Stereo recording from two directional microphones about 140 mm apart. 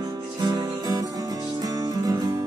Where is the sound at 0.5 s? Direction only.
30° right (ahead or behind).